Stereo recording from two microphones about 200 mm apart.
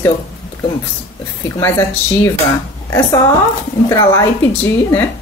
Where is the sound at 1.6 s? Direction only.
15° left (ahead or behind).